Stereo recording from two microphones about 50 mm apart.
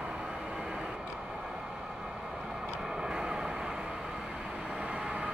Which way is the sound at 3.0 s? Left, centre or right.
Centre.